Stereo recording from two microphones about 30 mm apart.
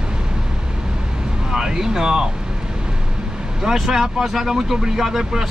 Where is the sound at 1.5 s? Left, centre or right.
Centre.